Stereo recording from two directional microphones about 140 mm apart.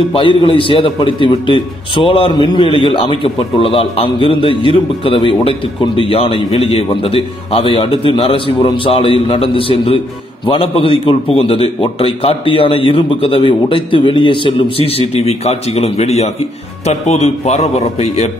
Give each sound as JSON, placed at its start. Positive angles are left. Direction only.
{"t": 0.1, "sound": "a man's voice", "side_deg": 40}